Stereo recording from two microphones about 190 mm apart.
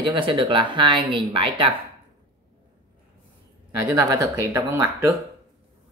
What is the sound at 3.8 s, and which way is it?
Speech, 20° right (ahead or behind).